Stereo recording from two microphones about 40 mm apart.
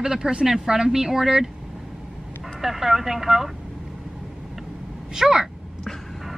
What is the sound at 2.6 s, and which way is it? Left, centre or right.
Speech, centre.